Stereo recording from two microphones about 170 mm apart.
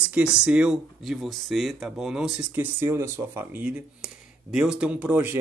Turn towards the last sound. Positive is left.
turn(degrees=-10)  # may be behind; listen again after turning